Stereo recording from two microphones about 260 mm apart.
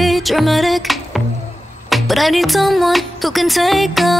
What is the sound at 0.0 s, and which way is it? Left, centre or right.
Music, centre.